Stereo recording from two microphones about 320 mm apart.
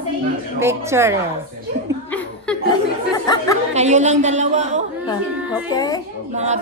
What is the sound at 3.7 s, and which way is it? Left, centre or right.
Music, right.